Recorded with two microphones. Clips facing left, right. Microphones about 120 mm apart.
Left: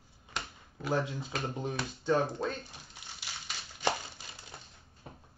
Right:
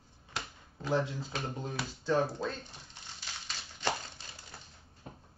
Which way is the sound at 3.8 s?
10° left (ahead or behind).